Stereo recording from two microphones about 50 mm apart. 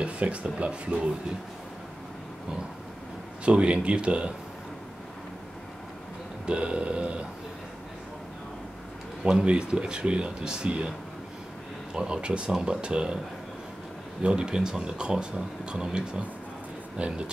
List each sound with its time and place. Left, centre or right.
0.0 s speech: right
3.4 s speech: right
6.4 s speech: right
9.2 s speech: centre
11.9 s speech: centre
14.2 s speech: centre